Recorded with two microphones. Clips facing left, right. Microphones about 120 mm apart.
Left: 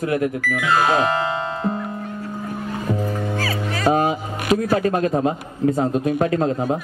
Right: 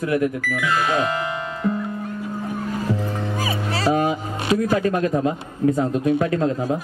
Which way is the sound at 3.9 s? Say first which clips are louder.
Left 2 dB; 35° left (ahead or behind).